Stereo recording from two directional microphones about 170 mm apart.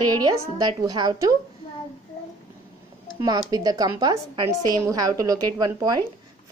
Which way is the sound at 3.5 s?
20° right (ahead or behind).